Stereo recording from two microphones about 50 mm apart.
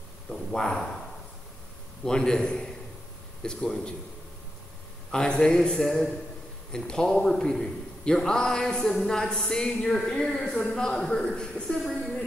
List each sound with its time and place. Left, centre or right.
0.3 s a man's voice: centre
2.0 s a man's voice: centre
5.1 s a man's voice: centre